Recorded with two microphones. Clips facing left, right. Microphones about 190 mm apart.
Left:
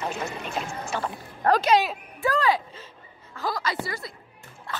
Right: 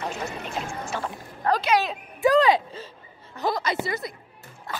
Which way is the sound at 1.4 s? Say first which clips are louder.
Left 2 dB; 45° left (ahead or behind).